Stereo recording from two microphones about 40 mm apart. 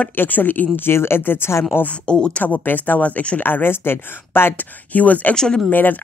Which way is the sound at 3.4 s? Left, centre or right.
Left.